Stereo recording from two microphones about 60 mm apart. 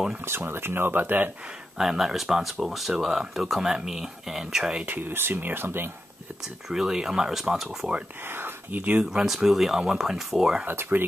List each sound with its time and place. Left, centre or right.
0.2 s speech: right
1.8 s speech: centre
4.8 s speech: right
6.7 s speech: centre
8.2 s speech: right
9.1 s speech: centre
10.7 s speech: right